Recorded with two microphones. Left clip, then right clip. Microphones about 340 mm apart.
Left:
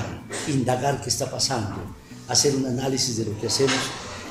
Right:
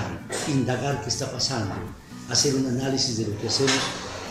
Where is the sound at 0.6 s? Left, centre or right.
Left.